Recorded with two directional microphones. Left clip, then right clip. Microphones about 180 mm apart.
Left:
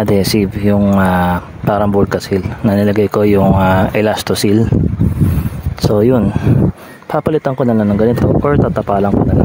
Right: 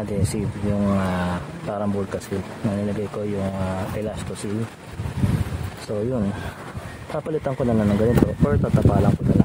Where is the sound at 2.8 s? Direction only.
45° left (ahead or behind).